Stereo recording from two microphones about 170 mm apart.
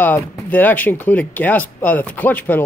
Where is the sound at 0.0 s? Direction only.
10° left (ahead or behind).